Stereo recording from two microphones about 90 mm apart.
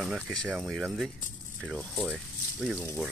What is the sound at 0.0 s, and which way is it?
Speech, 5° left (ahead or behind).